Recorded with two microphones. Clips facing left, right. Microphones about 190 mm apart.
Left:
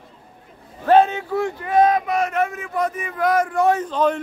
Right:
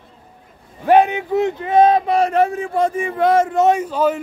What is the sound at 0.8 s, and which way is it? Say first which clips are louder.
Speech: right 2 dB; 15° right (ahead or behind).